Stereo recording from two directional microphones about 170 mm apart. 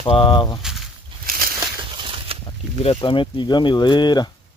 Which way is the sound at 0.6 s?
Centre (ahead or behind).